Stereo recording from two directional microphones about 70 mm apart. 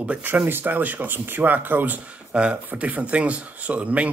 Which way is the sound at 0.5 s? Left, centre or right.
Right.